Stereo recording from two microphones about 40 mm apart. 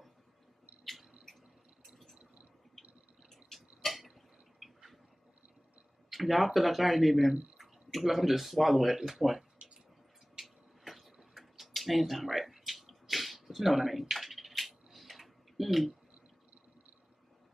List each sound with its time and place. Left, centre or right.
3.5 s a sound: centre
6.0 s speech: centre
9.6 s drip: right
10.4 s tick-tock: centre